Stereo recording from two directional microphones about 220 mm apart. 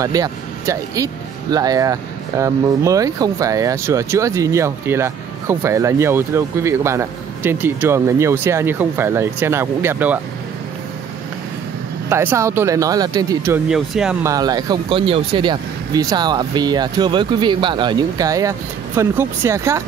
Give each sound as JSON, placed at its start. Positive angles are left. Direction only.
{"t": 0.0, "sound": "speech", "side_deg": -15}
{"t": 12.1, "sound": "speech", "side_deg": -10}
{"t": 14.2, "sound": "speech", "side_deg": -15}